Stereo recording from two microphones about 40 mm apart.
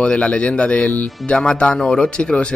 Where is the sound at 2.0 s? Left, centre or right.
Left.